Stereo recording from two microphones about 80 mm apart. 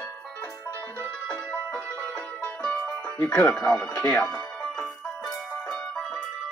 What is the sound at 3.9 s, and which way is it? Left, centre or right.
Speech, centre.